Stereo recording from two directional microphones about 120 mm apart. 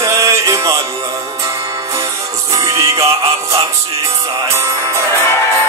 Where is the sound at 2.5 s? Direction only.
25° right (ahead or behind).